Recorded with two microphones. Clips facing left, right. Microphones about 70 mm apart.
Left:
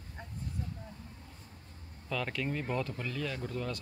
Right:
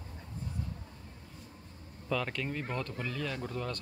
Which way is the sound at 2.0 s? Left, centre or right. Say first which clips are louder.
Right 1 dB; centre.